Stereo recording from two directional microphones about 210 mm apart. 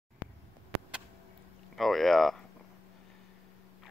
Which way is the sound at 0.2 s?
10° right (ahead or behind).